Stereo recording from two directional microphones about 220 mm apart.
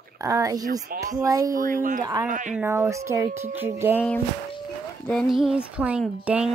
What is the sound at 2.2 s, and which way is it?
Speech, 35° right (ahead or behind).